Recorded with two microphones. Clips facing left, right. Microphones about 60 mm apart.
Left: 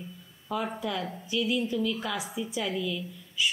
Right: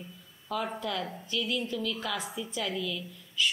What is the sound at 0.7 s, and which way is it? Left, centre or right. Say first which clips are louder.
Speech: left 1 dB; centre.